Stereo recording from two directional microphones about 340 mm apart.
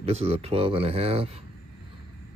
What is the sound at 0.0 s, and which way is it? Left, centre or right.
Speech, centre.